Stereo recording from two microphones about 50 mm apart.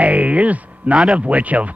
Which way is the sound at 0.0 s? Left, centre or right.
Right.